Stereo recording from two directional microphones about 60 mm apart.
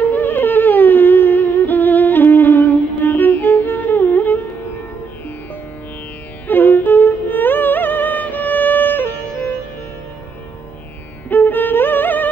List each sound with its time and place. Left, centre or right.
0.0 s humming: left
6.4 s music: left
11.2 s music: left